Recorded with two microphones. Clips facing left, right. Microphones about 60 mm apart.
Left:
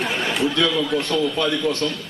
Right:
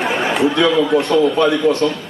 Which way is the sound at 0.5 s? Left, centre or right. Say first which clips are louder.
Right 7 dB; centre.